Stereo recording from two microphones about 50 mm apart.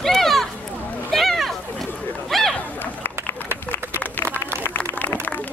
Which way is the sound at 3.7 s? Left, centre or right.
Left.